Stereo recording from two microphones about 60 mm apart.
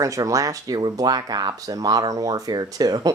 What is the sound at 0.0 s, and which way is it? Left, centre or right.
Speech, right.